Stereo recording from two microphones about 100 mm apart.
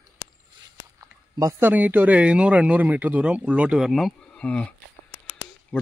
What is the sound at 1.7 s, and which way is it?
Speech, 15° right (ahead or behind).